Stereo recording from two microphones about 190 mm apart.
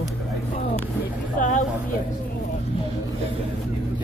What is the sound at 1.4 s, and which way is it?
Vehicle, 40° left (ahead or behind).